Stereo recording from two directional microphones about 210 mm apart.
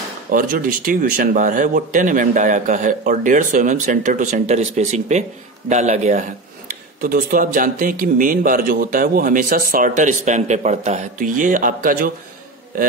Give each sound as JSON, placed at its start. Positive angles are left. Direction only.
{"t": 0.3, "sound": "a man's voice", "side_deg": -40}